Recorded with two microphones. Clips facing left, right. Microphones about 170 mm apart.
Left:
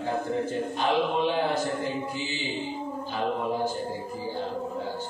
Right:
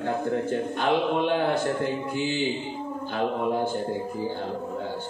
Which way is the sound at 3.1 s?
55° right (ahead or behind).